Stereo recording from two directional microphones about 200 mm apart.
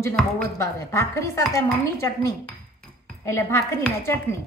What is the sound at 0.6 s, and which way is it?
A woman's voice, 15° left (ahead or behind).